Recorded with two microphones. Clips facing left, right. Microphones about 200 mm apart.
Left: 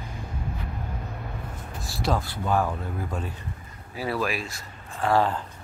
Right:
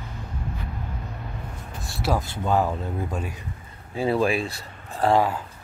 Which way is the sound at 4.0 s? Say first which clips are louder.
Right 6 dB; 25° right (ahead or behind).